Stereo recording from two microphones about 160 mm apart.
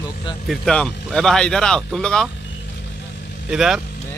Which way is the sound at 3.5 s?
Centre (ahead or behind).